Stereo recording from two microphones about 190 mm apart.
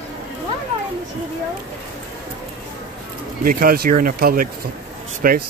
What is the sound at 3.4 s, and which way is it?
Speech, 50° right (ahead or behind).